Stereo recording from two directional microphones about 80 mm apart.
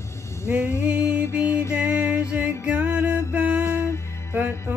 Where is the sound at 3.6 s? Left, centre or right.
Left.